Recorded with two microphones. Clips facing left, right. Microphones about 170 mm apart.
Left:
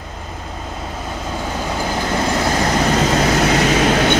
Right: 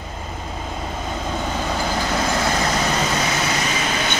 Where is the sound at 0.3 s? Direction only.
Centre (ahead or behind).